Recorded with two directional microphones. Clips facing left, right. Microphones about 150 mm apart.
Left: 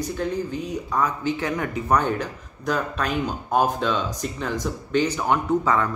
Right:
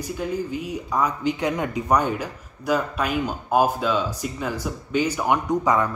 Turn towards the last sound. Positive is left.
turn(degrees=-15)  # may be behind; listen again after turning